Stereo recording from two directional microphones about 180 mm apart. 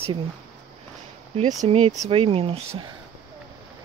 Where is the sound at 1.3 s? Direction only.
40° right (ahead or behind).